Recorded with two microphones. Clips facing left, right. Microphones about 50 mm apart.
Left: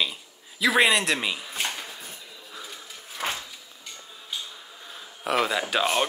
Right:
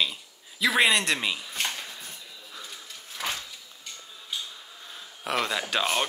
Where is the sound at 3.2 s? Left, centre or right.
Left.